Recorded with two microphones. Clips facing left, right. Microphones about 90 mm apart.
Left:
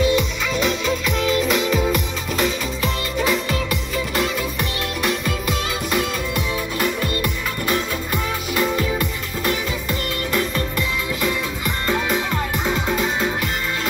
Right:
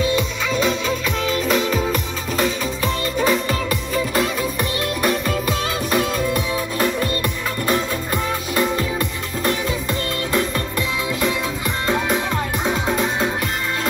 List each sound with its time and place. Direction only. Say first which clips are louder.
0.5 s music: right 2 dB; 35° right (ahead or behind)
11.9 s music: right 1 dB; 25° right (ahead or behind)